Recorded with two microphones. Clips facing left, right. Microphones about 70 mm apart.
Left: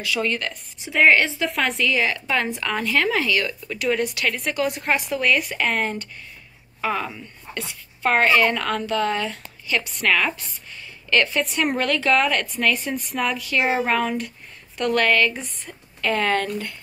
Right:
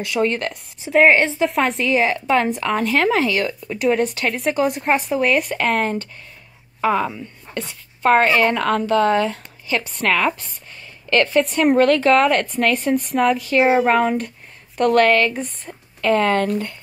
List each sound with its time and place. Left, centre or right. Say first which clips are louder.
0.2 s speech: right 9 dB; right
1.8 s a woman's voice: right 4 dB; right
6.8 s a woman's voice: right 6 dB; right